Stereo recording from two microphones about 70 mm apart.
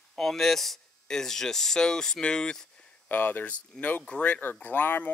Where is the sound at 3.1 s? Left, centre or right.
Left.